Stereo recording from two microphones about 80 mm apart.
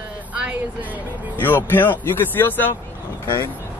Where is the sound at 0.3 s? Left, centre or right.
Centre.